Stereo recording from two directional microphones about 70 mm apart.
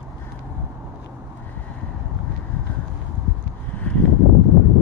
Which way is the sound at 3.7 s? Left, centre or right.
Centre.